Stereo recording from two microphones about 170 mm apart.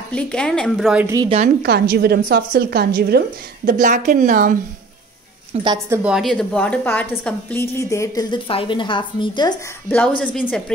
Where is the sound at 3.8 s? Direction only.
50° right (ahead or behind).